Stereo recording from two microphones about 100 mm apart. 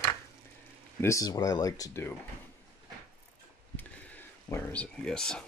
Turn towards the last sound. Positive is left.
turn(degrees=5)  # may be behind; listen again after turning